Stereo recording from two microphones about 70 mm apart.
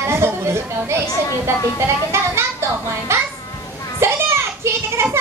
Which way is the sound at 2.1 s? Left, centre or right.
Right.